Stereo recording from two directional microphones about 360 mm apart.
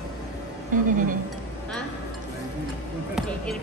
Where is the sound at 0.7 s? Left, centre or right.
Right.